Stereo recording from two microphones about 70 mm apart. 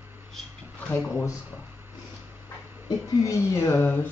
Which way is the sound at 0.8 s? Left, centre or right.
Left.